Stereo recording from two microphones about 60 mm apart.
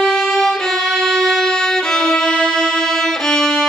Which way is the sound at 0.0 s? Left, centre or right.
Centre.